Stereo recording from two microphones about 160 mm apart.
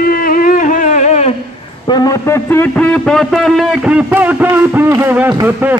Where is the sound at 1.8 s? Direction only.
25° left (ahead or behind); by 5.7 s 15° right (ahead or behind).